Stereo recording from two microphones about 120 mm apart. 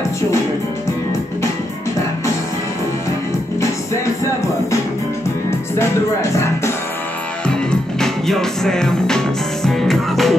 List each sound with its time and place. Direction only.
5.8 s music: 25° left (ahead or behind)
7.4 s music: 5° left (ahead or behind)